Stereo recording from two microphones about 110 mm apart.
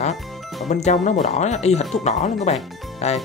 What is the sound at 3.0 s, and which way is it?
Speech, 70° left (ahead or behind).